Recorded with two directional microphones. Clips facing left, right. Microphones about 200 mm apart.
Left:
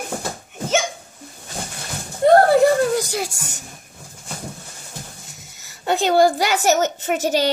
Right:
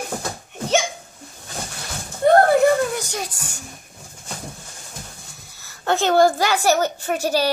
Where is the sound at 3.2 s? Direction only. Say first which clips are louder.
Left 4 dB; 25° left (ahead or behind).